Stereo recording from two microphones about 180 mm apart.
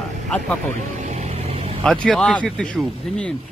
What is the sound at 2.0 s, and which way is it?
Speech, 5° left (ahead or behind).